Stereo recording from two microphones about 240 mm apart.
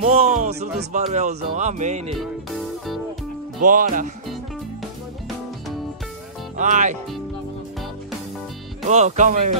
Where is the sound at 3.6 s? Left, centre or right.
Right.